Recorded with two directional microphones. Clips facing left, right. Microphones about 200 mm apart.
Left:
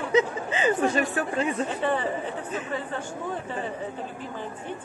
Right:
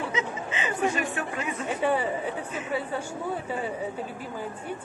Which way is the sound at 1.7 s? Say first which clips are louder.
Right 1 dB; 10° right (ahead or behind).